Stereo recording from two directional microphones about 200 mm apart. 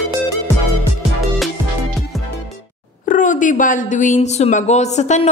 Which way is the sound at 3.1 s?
40° left (ahead or behind).